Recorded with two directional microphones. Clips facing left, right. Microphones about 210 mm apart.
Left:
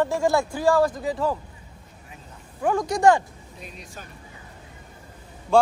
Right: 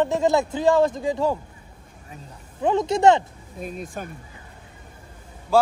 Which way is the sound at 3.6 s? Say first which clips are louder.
Right 10 dB; 50° right (ahead or behind).